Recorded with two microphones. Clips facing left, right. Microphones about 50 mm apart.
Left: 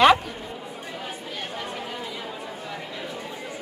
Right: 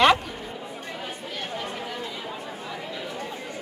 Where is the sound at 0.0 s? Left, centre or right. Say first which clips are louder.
Left 2 dB; centre.